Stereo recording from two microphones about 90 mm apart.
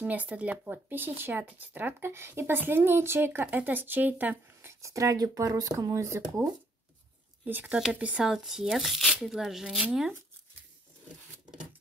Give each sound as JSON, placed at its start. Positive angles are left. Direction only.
{"t": 0.0, "sound": "speech", "side_deg": -15}
{"t": 7.4, "sound": "speech", "side_deg": -20}